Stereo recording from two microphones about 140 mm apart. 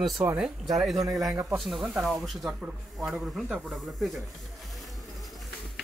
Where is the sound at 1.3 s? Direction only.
20° right (ahead or behind).